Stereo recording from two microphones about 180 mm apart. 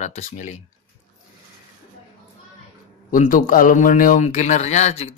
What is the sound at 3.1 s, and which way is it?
Speech, 50° left (ahead or behind).